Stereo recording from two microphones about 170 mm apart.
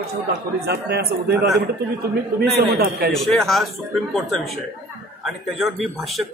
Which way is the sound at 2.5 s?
65° right (ahead or behind).